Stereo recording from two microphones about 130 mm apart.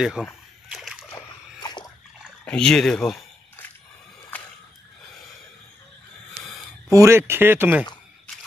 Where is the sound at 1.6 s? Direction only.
30° left (ahead or behind).